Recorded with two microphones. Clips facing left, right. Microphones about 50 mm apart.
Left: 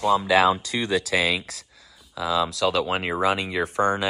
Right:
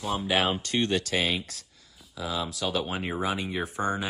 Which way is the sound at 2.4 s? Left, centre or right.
Left.